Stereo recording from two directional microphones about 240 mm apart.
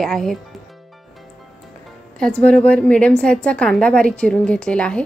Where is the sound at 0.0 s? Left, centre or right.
Centre.